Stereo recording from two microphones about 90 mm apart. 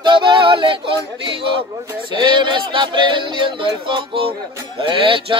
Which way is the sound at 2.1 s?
60° right (ahead or behind).